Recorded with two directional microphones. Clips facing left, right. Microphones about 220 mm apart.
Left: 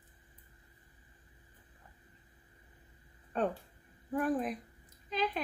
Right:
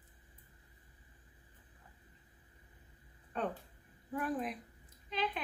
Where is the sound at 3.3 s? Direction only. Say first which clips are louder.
Left 5 dB; 45° left (ahead or behind).